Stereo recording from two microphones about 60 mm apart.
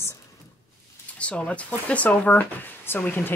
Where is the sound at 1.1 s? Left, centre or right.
Centre.